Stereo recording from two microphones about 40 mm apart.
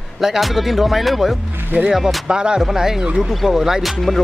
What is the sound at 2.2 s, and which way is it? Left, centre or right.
Speech, right.